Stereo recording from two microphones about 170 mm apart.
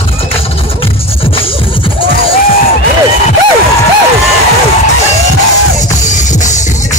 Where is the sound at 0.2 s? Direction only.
35° left (ahead or behind).